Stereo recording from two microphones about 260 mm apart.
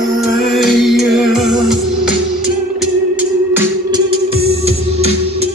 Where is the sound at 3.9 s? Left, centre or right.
Right.